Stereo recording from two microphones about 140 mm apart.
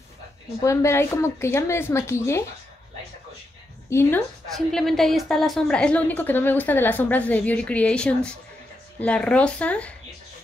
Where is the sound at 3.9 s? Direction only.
20° left (ahead or behind).